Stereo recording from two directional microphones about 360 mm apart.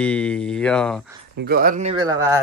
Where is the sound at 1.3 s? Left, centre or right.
Right; by 2.4 s centre.